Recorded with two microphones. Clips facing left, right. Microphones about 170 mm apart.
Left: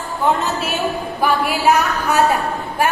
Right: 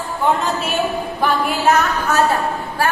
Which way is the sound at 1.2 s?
10° left (ahead or behind).